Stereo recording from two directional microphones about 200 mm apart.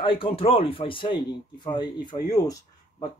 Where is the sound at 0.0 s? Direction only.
25° left (ahead or behind).